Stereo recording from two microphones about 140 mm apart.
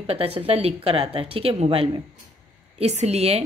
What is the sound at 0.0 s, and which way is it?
Speech, 45° right (ahead or behind).